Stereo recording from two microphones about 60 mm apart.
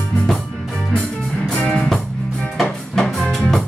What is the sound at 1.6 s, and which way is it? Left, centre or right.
Music, centre.